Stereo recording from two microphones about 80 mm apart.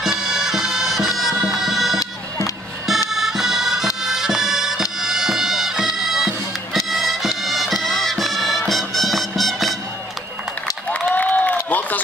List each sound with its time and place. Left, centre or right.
0.2 s bagpipes: centre
2.0 s music: left
3.1 s bagpipes: centre
6.9 s music: centre
10.9 s a sound: centre